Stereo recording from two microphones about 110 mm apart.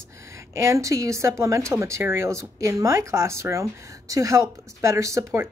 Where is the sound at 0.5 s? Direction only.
25° right (ahead or behind).